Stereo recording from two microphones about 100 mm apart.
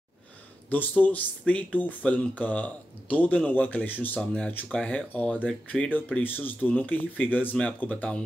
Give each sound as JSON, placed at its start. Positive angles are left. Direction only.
{"t": 0.7, "sound": "speech", "side_deg": 15}